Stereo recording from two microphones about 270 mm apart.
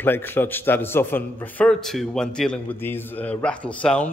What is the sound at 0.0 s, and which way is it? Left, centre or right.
A man's voice, centre.